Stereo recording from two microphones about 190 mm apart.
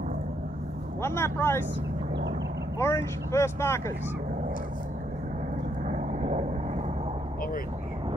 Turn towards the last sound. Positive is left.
turn(degrees=-35)  # may be behind; listen again after turning